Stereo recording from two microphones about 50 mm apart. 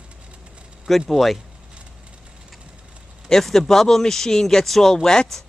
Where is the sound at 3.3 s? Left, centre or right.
Centre.